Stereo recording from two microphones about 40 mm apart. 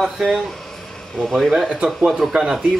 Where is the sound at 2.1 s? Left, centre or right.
Centre.